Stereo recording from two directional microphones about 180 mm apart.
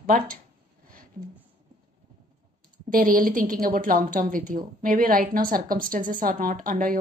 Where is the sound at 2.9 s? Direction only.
50° right (ahead or behind).